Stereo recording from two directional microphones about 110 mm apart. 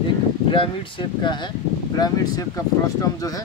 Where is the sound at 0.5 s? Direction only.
50° left (ahead or behind).